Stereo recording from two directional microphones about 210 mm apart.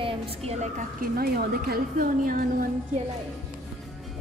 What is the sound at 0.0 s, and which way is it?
Speech, 25° right (ahead or behind).